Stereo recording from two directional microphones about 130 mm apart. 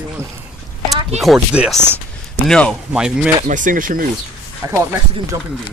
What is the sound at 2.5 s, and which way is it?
Speech, 10° left (ahead or behind).